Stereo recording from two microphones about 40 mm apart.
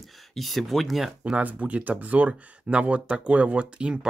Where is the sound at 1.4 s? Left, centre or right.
Right.